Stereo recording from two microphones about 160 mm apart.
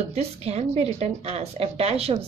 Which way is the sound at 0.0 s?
40° right (ahead or behind).